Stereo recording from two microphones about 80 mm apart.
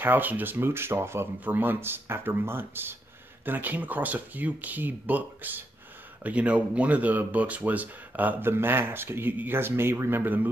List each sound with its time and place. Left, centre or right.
0.0 s speech: right